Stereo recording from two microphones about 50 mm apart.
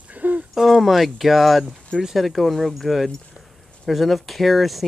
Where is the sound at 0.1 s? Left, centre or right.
Right.